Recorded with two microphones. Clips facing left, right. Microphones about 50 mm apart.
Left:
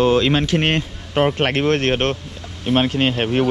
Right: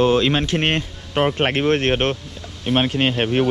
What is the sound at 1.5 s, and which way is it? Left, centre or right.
Speech, centre.